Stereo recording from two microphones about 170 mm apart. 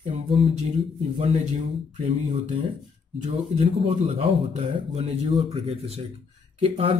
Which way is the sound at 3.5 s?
35° right (ahead or behind).